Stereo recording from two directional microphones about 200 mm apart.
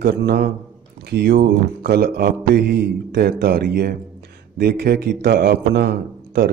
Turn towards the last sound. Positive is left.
turn(degrees=-55)  # may be behind; listen again after turning